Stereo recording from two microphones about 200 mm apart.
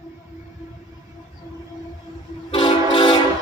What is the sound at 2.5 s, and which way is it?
Train, 25° left (ahead or behind).